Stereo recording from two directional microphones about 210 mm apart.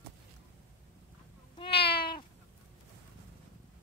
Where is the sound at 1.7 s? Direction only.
50° left (ahead or behind).